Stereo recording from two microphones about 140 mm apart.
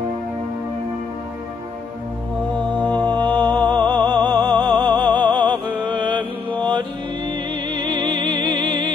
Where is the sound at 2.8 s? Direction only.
10° left (ahead or behind).